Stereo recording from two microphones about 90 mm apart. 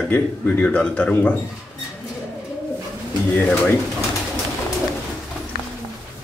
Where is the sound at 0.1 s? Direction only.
15° left (ahead or behind).